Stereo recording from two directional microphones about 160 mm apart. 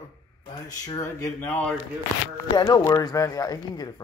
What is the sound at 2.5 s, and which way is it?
Speech, 25° left (ahead or behind).